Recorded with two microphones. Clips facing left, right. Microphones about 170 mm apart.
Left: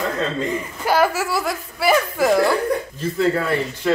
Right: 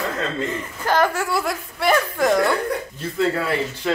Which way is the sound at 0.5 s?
10° left (ahead or behind).